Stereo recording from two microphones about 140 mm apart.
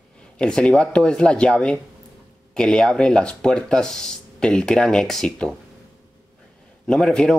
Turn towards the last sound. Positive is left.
turn(degrees=5)  # may be behind; listen again after turning